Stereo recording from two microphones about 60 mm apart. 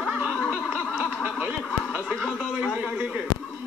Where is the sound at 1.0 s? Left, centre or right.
Centre.